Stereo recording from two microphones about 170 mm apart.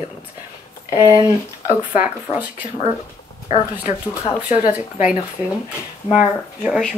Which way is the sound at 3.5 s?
35° left (ahead or behind).